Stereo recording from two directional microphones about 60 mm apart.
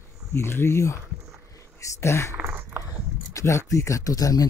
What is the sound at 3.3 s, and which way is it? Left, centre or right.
Speech, left.